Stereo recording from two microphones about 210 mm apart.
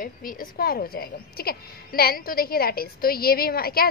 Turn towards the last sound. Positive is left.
turn(degrees=45)  # may be behind; listen again after turning